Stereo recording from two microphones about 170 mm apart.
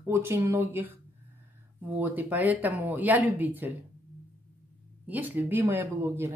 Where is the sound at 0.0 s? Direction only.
15° right (ahead or behind).